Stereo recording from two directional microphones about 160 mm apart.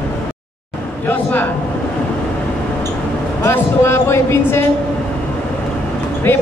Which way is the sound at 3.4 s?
15° left (ahead or behind).